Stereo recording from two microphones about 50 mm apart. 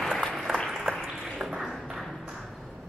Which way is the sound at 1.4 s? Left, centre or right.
Right.